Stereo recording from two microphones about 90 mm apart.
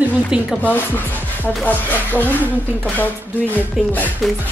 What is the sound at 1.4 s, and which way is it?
Speech, 20° left (ahead or behind).